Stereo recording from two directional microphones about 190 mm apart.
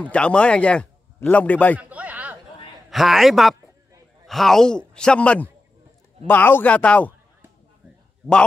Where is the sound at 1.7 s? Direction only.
10° right (ahead or behind).